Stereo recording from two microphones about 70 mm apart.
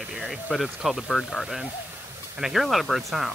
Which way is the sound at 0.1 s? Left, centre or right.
Centre.